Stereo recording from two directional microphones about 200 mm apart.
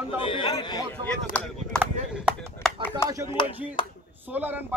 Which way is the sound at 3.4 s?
25° left (ahead or behind).